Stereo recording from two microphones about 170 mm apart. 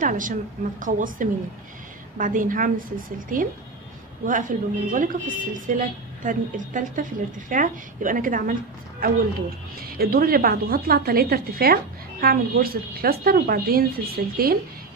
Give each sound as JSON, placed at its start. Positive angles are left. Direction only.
{"t": 0.0, "sound": "a woman's voice", "side_deg": -50}
{"t": 9.8, "sound": "a woman's voice", "side_deg": -60}